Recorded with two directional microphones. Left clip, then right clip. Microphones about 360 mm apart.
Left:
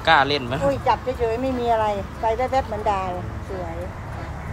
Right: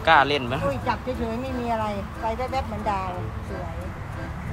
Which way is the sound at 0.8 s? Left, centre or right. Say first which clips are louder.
Left 6 dB; left.